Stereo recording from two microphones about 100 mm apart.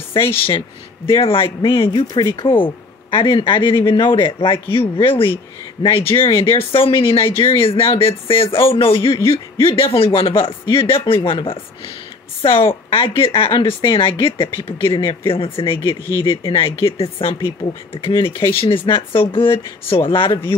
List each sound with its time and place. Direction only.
1.1 s speech: 60° left (ahead or behind)
9.2 s speech: 25° left (ahead or behind)
9.8 s speech: 65° left (ahead or behind)